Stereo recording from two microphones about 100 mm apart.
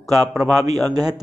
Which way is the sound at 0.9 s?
40° right (ahead or behind).